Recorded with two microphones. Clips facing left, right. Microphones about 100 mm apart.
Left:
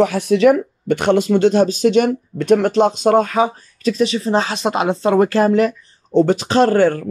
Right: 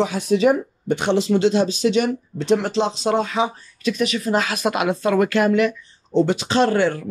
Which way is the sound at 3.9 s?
30° left (ahead or behind).